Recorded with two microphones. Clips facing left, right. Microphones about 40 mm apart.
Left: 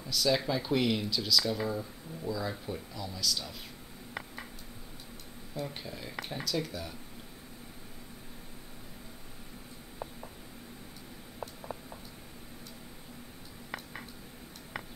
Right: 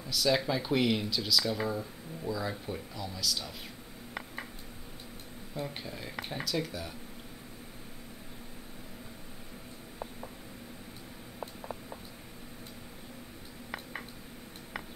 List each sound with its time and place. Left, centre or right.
0.0 s speech: centre
5.7 s speech: centre
11.3 s a sound: centre